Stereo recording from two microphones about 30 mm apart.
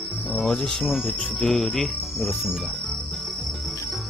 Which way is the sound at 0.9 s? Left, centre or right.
Centre.